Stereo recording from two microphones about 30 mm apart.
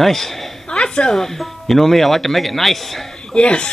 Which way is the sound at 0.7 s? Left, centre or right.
Left.